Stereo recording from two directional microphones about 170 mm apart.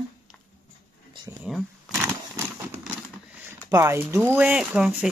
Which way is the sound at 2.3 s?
15° right (ahead or behind).